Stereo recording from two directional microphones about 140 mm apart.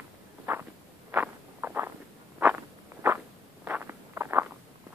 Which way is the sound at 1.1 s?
15° right (ahead or behind).